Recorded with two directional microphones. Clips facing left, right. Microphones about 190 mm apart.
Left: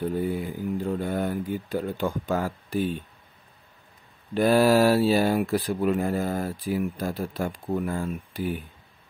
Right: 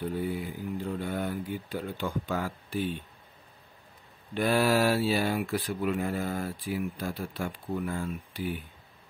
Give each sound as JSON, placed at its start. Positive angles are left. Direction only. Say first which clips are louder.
{"t": 0.2, "sound": "speech", "louder": "left 5 dB", "side_deg": 45}
{"t": 4.3, "sound": "speech", "louder": "left 6 dB", "side_deg": 40}